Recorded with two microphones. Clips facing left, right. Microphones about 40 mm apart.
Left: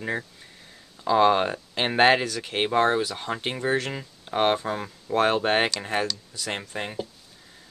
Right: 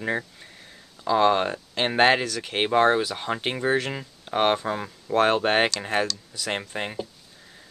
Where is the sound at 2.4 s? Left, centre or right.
Centre.